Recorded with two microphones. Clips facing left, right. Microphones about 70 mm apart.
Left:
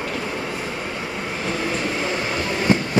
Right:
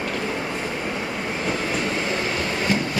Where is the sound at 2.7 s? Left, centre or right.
Left.